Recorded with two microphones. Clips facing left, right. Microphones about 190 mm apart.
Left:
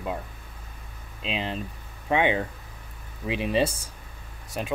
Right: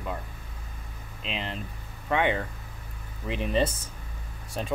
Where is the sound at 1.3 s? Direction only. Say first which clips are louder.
Left 4 dB; 15° left (ahead or behind).